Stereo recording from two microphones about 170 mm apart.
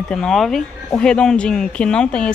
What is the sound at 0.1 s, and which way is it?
Speech, centre (ahead or behind).